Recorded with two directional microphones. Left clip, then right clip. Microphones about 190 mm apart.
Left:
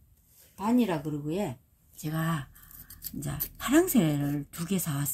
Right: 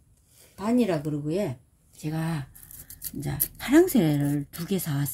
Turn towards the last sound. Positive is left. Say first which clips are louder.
# right 3 dB
turn(degrees=-10)  # may be behind; listen again after turning